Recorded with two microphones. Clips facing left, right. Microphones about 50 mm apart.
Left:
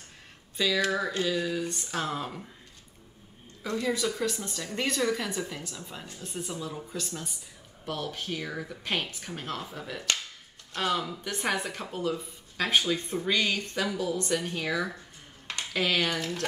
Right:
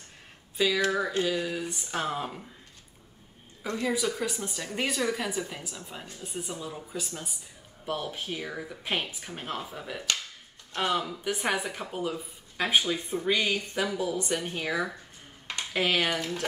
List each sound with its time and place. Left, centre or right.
0.6 s speech: centre
3.7 s speech: centre